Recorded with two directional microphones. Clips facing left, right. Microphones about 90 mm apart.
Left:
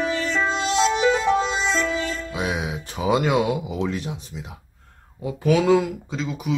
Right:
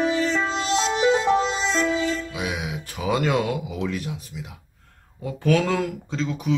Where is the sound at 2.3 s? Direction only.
30° left (ahead or behind).